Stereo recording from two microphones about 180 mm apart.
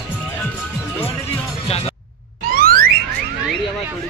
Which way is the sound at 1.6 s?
35° left (ahead or behind).